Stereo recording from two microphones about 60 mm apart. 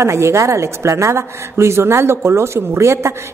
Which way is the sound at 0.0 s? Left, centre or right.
Right.